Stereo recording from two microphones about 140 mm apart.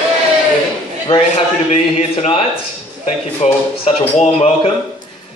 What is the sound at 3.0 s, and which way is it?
Speech, 45° left (ahead or behind).